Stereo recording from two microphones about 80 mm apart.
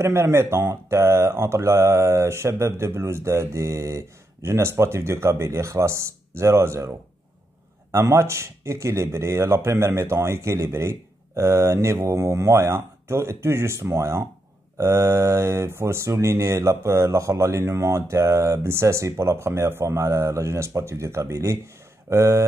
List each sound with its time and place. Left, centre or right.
0.0 s speech: right